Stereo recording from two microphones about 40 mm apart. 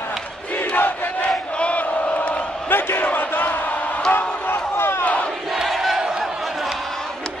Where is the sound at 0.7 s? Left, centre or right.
Left.